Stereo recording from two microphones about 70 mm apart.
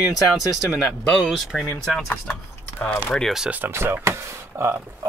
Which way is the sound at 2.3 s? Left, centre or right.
Left.